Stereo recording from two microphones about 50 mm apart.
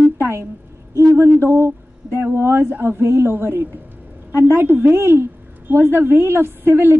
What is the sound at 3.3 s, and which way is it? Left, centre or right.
Speech, right.